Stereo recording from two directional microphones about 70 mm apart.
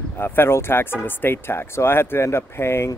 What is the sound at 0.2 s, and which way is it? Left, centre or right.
Speech, left.